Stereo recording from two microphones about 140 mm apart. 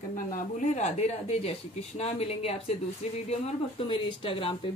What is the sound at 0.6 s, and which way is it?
Speech, 55° left (ahead or behind).